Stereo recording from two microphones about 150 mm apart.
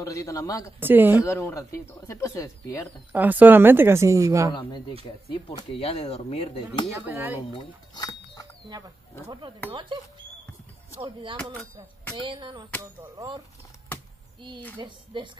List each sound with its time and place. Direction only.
0.0 s speech: 20° left (ahead or behind)
0.7 s a woman's voice: 15° right (ahead or behind)
1.2 s speech: 20° left (ahead or behind)
3.1 s a woman's voice: 10° right (ahead or behind)
5.0 s speech: 35° left (ahead or behind)
7.1 s a woman's voice: 15° right (ahead or behind)
7.5 s speech: 30° left (ahead or behind)
8.6 s speech: 25° right (ahead or behind)
12.2 s speech: 35° right (ahead or behind)